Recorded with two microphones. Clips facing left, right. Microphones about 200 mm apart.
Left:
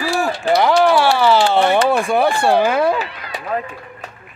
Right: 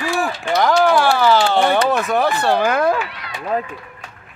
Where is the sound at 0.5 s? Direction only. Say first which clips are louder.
Left 1 dB; 5° left (ahead or behind).